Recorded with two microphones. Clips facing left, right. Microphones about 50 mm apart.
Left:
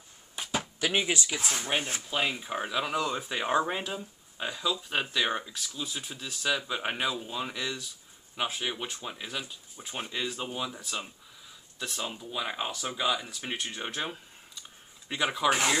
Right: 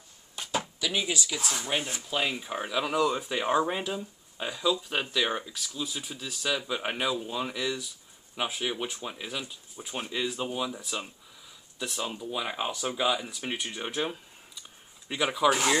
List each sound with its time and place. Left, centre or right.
0.4 s a sound: centre
0.7 s speech: left
1.7 s speech: centre
2.0 s speech: centre